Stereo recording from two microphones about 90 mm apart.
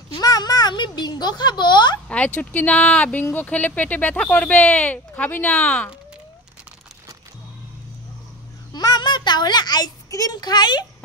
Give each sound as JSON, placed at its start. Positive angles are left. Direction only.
{"t": 0.1, "sound": "a sound", "side_deg": 50}
{"t": 2.0, "sound": "speech", "side_deg": 15}
{"t": 8.7, "sound": "a child's voice", "side_deg": 50}